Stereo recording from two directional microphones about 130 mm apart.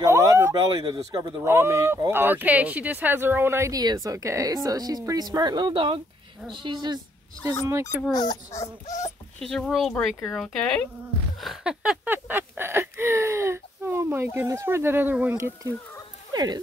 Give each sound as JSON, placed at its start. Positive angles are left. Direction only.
{"t": 0.0, "sound": "speech", "side_deg": -25}
{"t": 1.4, "sound": "speech", "side_deg": -20}
{"t": 8.1, "sound": "speech", "side_deg": 30}
{"t": 9.4, "sound": "speech", "side_deg": 5}
{"t": 12.1, "sound": "a sound", "side_deg": -15}
{"t": 16.3, "sound": "sheep", "side_deg": -30}